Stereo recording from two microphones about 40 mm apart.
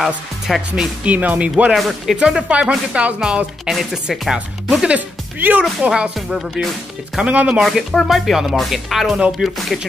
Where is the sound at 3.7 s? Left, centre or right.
Centre.